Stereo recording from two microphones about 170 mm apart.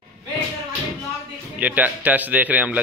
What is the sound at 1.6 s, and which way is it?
Speech, 10° right (ahead or behind).